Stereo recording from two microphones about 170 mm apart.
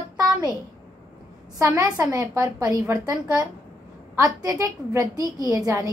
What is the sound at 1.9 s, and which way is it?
Speech, 10° right (ahead or behind).